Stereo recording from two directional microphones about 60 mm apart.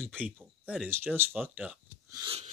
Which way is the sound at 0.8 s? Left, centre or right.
Right.